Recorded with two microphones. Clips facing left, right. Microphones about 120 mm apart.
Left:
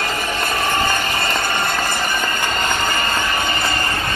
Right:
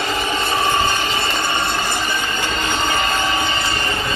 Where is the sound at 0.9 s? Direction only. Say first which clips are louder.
Even; 50° left (ahead or behind).